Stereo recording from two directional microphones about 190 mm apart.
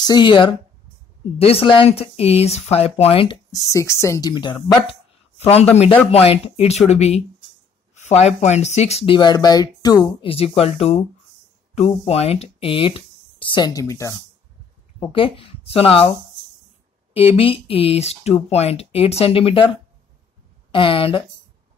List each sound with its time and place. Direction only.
0.0 s speech: 25° left (ahead or behind)
3.5 s a man's voice: 15° left (ahead or behind)
15.0 s speech: 30° left (ahead or behind)
17.1 s speech: 30° left (ahead or behind)